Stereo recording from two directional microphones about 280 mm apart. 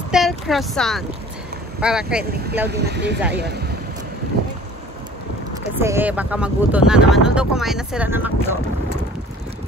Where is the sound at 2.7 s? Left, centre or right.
Right.